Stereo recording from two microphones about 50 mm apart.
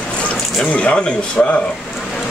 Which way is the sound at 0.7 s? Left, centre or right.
Left.